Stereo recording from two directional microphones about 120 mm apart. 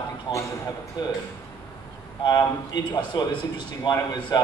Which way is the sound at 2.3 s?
35° left (ahead or behind).